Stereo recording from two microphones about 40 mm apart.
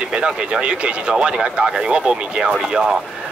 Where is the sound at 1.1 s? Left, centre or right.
Centre.